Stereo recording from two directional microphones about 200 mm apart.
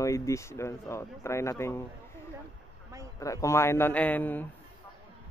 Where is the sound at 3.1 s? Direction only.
15° left (ahead or behind).